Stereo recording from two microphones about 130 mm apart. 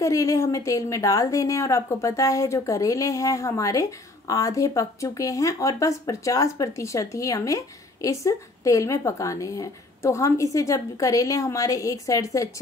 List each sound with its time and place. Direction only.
0.0 s speech: 25° left (ahead or behind)